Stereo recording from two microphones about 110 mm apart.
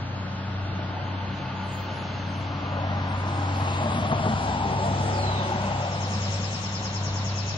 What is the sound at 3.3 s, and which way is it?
Vehicle, 45° left (ahead or behind).